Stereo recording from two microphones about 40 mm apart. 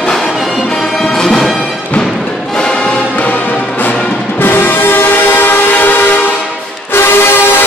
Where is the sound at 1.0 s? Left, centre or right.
Centre.